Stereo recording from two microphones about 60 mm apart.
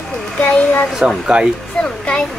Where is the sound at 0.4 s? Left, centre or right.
Left.